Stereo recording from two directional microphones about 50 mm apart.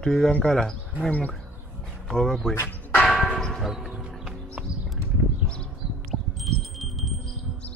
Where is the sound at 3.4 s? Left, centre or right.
Centre.